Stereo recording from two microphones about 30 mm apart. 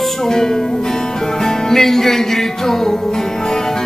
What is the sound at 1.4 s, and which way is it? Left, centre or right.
Music, centre.